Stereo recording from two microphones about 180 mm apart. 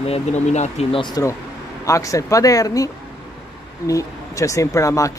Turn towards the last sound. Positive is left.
turn(degrees=15)  # may be behind; listen again after turning